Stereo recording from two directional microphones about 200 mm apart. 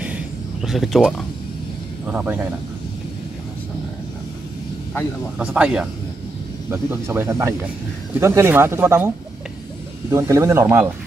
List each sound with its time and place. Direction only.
0.0 s a sound: 5° right (ahead or behind)
2.0 s speech: 10° right (ahead or behind)
5.4 s speech: 5° right (ahead or behind)
10.1 s speech: 15° right (ahead or behind)